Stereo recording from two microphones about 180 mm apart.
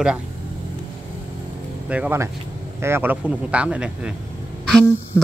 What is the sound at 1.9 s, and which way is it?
Speech, 10° right (ahead or behind).